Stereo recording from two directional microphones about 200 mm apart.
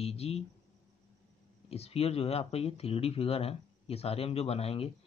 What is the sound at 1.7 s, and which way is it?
Speech, 30° left (ahead or behind).